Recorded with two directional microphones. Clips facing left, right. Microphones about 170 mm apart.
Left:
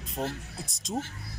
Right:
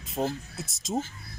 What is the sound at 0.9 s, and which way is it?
Speech, 20° right (ahead or behind).